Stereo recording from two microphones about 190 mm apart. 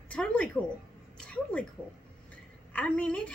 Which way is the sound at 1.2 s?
5° left (ahead or behind).